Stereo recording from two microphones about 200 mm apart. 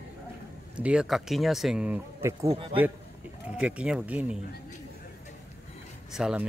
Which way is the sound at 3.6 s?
5° right (ahead or behind).